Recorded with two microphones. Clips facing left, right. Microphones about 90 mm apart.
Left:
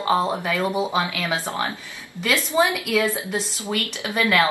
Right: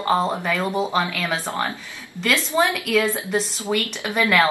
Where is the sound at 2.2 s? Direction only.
5° left (ahead or behind).